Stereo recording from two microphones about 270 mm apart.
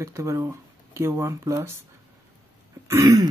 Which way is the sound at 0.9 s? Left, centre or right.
Centre.